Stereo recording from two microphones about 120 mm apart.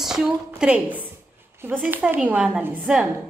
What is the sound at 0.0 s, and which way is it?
A woman's voice, 5° right (ahead or behind).